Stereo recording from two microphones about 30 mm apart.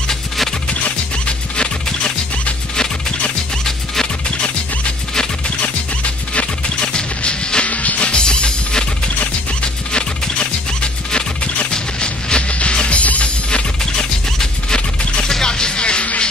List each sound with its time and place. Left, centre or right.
3.6 s music: centre
6.8 s music: left
7.6 s music: left
8.1 s music: left
9.9 s music: left
15.2 s music: left